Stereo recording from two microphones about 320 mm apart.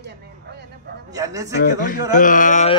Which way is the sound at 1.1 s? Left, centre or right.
Centre.